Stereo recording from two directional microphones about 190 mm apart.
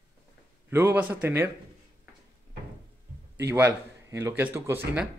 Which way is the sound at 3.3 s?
15° right (ahead or behind).